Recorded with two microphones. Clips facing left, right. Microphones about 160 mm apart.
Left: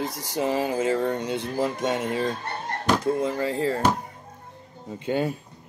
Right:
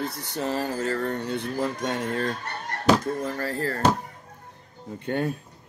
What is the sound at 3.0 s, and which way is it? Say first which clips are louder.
Speech: left 4 dB; 20° left (ahead or behind).